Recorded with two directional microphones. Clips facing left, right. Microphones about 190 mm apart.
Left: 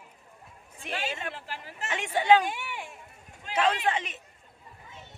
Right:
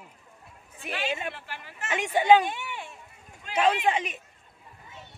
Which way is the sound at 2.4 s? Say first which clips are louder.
Even; 10° left (ahead or behind).